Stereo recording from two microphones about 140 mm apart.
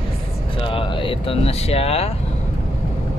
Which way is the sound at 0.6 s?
40° left (ahead or behind).